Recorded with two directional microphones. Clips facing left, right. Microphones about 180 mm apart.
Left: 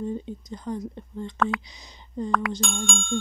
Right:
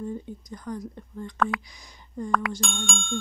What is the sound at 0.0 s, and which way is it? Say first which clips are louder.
Speech: left 3 dB; 20° left (ahead or behind).